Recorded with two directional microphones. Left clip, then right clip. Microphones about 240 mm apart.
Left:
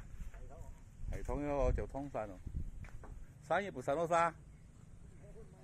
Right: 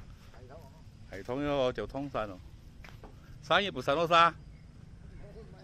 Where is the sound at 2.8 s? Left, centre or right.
Centre.